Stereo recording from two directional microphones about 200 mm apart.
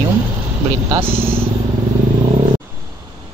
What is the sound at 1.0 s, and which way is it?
Speech, 25° right (ahead or behind).